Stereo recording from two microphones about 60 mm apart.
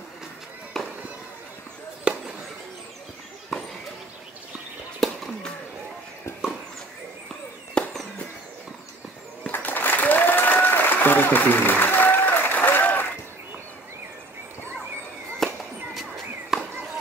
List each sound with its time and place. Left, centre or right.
0.7 s fireworks: centre
2.1 s chop: centre
5.0 s chop: centre
7.8 s fireworks: centre
9.5 s applause: left
15.3 s fireworks: centre